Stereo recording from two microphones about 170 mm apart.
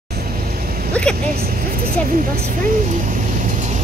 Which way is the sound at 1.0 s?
5° left (ahead or behind).